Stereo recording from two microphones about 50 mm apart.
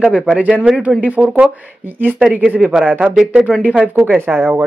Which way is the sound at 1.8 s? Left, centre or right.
Right.